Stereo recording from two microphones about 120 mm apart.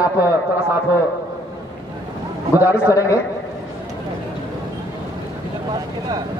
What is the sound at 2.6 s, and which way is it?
Speech, 15° right (ahead or behind).